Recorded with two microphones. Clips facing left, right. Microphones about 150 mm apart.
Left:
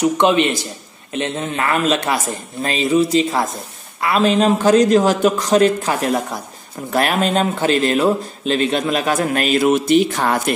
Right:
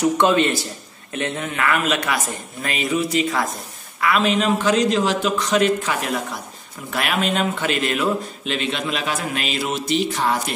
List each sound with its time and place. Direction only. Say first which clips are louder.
0.0 s a man's voice: left 2 dB; 20° left (ahead or behind); by 10.5 s 55° left (ahead or behind)